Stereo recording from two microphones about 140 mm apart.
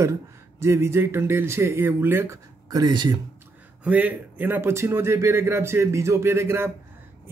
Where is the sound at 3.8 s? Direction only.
10° right (ahead or behind).